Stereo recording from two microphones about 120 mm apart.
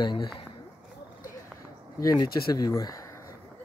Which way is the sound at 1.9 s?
35° left (ahead or behind).